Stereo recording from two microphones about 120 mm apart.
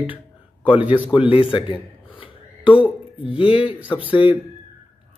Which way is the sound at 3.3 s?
50° left (ahead or behind).